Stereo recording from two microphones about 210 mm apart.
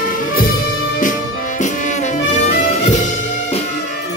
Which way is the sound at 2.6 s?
30° left (ahead or behind).